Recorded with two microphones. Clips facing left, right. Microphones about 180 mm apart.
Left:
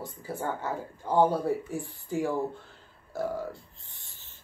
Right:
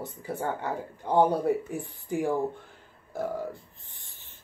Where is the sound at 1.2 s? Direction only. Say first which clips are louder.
Right 1 dB; 20° right (ahead or behind).